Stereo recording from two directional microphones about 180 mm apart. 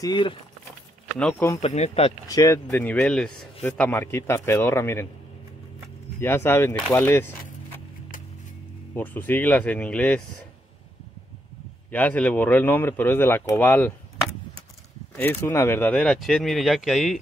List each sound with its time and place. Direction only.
0.0 s speech: 25° left (ahead or behind)
1.6 s speech: 35° left (ahead or behind)
2.2 s speech: 20° left (ahead or behind)
6.2 s speech: 15° left (ahead or behind)
8.9 s speech: 10° left (ahead or behind)
11.9 s speech: 10° left (ahead or behind)
15.1 s speech: 10° left (ahead or behind)